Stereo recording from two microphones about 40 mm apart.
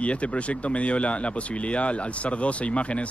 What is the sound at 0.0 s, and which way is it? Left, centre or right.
Speech, left.